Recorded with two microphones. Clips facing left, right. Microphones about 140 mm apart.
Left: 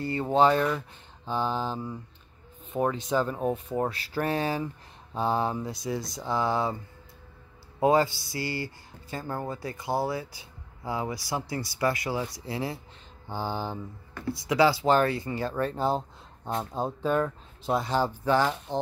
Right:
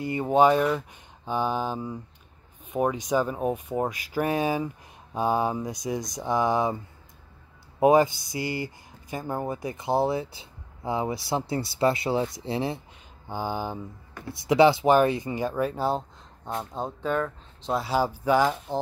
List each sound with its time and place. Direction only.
0.0 s speech: 15° right (ahead or behind)
7.8 s speech: 20° right (ahead or behind)
13.3 s speech: 15° right (ahead or behind)
14.3 s speech: 25° right (ahead or behind); by 17.8 s 5° left (ahead or behind)
17.8 s speech: 10° right (ahead or behind)